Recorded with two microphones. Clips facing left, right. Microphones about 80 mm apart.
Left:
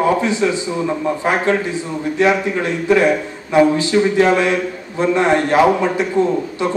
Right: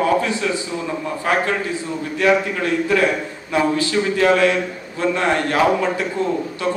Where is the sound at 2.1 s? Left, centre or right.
Left.